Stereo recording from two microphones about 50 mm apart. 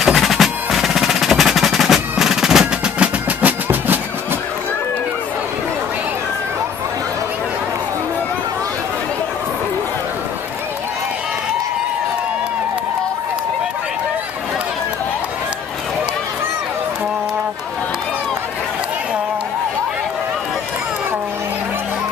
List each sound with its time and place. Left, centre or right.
0.0 s music: centre
3.3 s music: right